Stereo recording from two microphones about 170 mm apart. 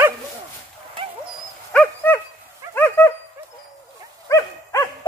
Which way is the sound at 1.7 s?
10° left (ahead or behind).